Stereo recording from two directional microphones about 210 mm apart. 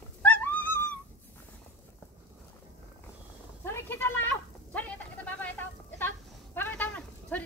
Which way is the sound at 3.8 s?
10° left (ahead or behind).